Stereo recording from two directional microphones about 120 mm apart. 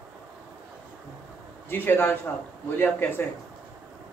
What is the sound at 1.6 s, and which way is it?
Speech, 20° left (ahead or behind).